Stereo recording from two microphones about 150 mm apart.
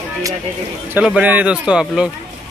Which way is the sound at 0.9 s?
10° right (ahead or behind).